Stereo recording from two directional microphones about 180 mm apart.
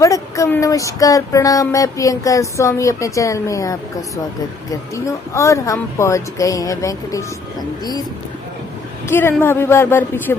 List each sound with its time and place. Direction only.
0.0 s speech: 15° left (ahead or behind)
9.1 s speech: 10° left (ahead or behind)